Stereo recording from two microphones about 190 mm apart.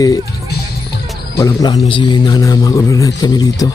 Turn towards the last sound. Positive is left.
turn(degrees=20)  # may be behind; listen again after turning